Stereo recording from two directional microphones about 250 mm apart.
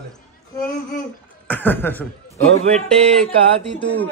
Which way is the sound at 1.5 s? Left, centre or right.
Centre.